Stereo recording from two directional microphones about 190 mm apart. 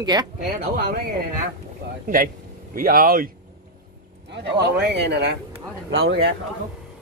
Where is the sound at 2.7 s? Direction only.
50° right (ahead or behind).